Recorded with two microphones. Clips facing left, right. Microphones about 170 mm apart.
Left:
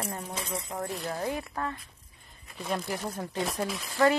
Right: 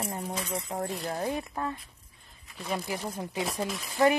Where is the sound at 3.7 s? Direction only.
15° right (ahead or behind).